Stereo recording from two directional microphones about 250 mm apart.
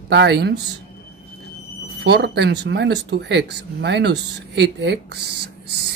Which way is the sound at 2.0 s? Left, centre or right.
Right.